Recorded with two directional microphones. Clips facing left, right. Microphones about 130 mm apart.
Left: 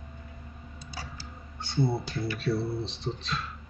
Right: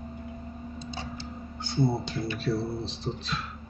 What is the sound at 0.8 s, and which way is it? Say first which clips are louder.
Tick-tock: right 3 dB; 25° right (ahead or behind).